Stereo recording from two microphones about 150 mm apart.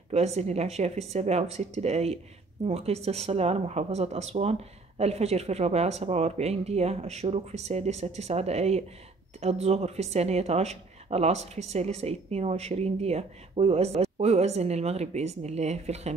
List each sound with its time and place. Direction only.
0.1 s speech: 45° right (ahead or behind)